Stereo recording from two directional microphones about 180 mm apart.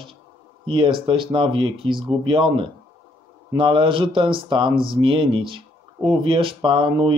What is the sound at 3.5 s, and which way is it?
Speech, 30° right (ahead or behind).